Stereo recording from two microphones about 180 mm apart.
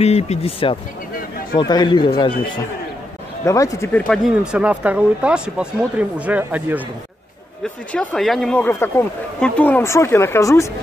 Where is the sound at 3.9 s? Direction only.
5° left (ahead or behind).